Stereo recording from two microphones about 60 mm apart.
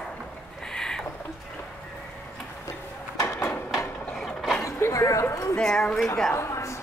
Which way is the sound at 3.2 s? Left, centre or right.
Left.